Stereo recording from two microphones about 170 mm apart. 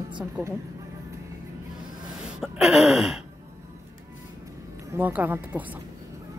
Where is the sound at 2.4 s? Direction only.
Centre (ahead or behind).